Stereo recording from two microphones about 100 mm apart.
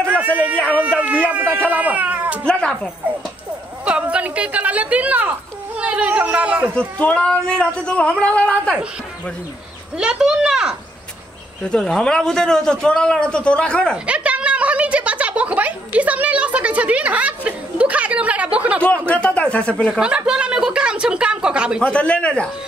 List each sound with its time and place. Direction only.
0.0 s a sound: 15° right (ahead or behind)
0.7 s a woman's voice: 15° right (ahead or behind)
2.4 s a man's voice: 10° left (ahead or behind)
3.8 s a woman's voice: 10° right (ahead or behind)
7.0 s a man's voice: 10° left (ahead or behind)
9.9 s a woman's voice: 10° right (ahead or behind)
11.6 s a man's voice: 10° left (ahead or behind)
14.0 s a sound: 10° right (ahead or behind)
19.0 s a man's voice: 15° left (ahead or behind)
19.9 s a woman's voice: 10° right (ahead or behind)
21.8 s a man's voice: 10° left (ahead or behind)